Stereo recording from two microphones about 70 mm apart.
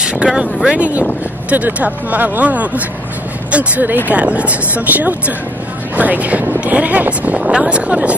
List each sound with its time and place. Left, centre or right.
0.0 s vehicle: centre
0.7 s speech: centre